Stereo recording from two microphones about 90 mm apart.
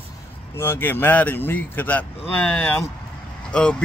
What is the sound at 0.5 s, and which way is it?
Speech, 25° left (ahead or behind).